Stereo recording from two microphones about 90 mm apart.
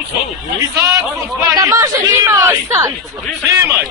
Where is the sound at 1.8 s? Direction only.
40° right (ahead or behind).